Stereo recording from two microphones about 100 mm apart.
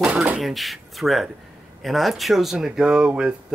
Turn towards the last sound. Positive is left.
turn(degrees=-15)  # may be behind; listen again after turning